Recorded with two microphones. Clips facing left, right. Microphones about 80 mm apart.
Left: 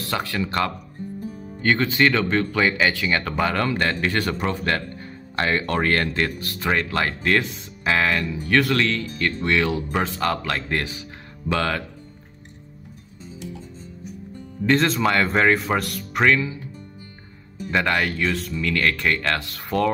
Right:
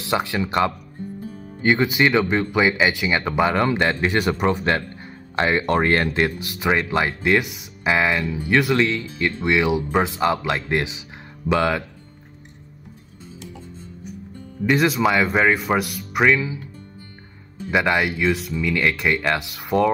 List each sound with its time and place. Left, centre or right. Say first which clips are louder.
0.0 s speech: right 3 dB; centre
14.7 s speech: right 1 dB; centre
17.6 s speech: right 2 dB; centre